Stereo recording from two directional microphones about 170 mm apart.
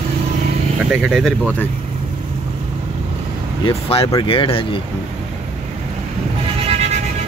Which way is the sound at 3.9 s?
35° left (ahead or behind).